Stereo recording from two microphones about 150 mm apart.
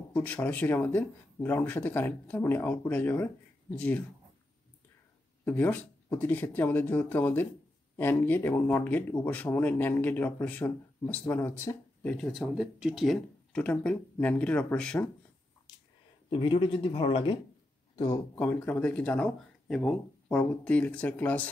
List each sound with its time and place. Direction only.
0.1 s speech: 10° left (ahead or behind)
5.4 s speech: 15° left (ahead or behind)
16.3 s speech: 35° left (ahead or behind)
17.9 s speech: 25° left (ahead or behind)
18.3 s speech: 15° left (ahead or behind)